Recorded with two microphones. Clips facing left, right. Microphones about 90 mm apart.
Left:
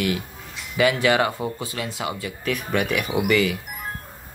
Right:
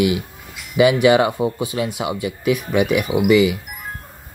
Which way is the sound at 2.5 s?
5° right (ahead or behind).